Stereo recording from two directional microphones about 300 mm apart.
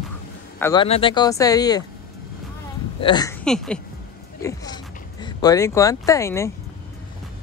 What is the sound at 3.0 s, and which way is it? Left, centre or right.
Speech, centre.